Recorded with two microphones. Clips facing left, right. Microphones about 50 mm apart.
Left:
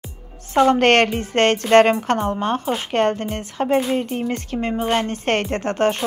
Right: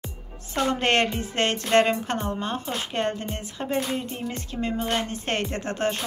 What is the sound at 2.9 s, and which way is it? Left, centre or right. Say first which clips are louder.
A woman's voice: left 8 dB; left.